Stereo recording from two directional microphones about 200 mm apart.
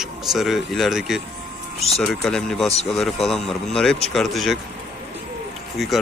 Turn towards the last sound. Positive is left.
turn(degrees=0)  # may be behind; listen again after turning